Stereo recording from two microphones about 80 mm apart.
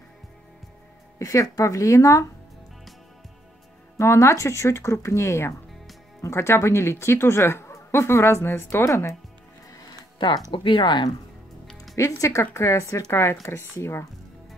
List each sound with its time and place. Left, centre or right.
1.2 s speech: left
4.0 s a woman's voice: left
10.5 s speech: left
11.9 s a woman's voice: left